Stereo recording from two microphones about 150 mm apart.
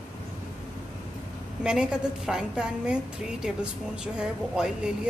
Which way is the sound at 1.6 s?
5° right (ahead or behind).